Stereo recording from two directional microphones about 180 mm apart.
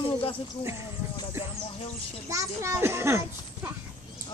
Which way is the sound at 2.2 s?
15° right (ahead or behind).